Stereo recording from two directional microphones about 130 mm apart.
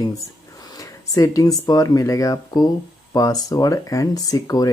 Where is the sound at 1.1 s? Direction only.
25° left (ahead or behind).